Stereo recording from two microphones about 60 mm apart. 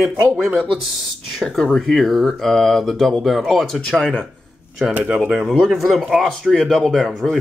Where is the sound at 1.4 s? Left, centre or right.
Centre.